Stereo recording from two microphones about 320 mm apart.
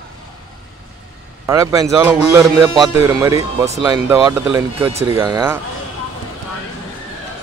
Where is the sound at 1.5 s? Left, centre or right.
Centre.